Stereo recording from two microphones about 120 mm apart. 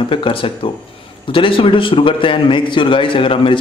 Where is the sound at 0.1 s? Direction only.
50° left (ahead or behind).